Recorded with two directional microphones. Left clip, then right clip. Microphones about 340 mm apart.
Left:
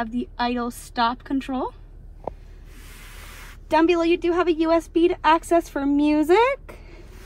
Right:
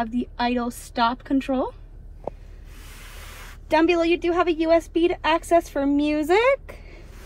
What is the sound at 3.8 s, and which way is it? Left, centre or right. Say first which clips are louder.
A woman's voice: left 1 dB; centre.